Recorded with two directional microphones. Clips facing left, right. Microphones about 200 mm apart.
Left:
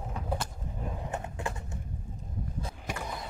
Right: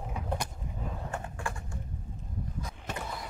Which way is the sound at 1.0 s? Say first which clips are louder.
Left 3 dB; 20° left (ahead or behind).